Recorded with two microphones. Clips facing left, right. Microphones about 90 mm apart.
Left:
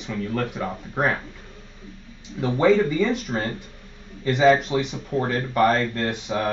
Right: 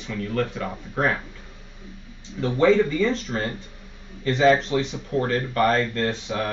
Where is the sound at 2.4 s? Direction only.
10° left (ahead or behind).